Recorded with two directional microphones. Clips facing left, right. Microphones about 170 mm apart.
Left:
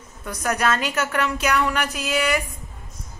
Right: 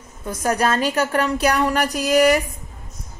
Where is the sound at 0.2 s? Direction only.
30° right (ahead or behind).